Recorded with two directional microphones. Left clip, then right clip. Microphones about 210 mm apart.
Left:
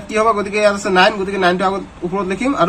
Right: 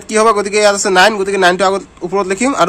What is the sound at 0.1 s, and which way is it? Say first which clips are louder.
A man's voice: right 4 dB; 40° right (ahead or behind).